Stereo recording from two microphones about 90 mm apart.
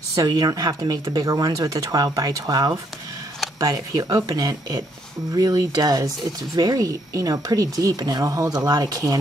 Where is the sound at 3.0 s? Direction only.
45° right (ahead or behind).